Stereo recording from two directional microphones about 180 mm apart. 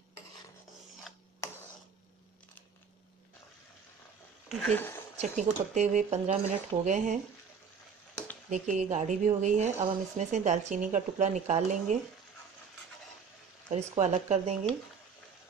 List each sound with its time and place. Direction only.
1.1 s mechanisms: centre (ahead or behind)
4.5 s speech: centre (ahead or behind)
4.7 s a woman's voice: 10° left (ahead or behind)
5.2 s speech: 40° right (ahead or behind)
8.5 s a woman's voice: 40° right (ahead or behind)
13.7 s speech: 40° right (ahead or behind)